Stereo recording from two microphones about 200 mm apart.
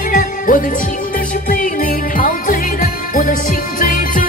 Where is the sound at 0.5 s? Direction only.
45° left (ahead or behind).